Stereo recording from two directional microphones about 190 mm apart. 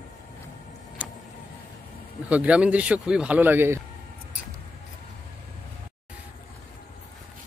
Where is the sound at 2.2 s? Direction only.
5° right (ahead or behind).